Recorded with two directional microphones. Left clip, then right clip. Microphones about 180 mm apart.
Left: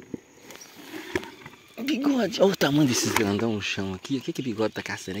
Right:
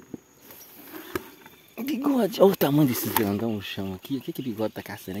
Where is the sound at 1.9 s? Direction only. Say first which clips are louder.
Even; 15° right (ahead or behind).